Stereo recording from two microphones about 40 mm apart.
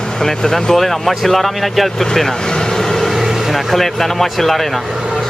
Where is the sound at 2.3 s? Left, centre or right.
Centre.